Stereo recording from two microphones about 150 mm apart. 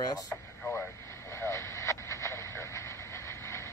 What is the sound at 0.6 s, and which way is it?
Radio, 15° left (ahead or behind).